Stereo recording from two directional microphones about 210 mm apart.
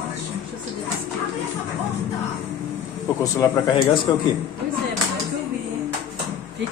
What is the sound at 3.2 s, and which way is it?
Speech, 20° left (ahead or behind).